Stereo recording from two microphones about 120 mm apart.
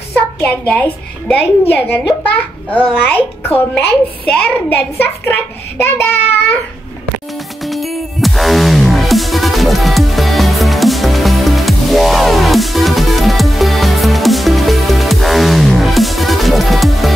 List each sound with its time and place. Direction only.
0.1 s a child's voice: 10° left (ahead or behind)
3.1 s a child's voice: 20° left (ahead or behind)
7.6 s music: centre (ahead or behind)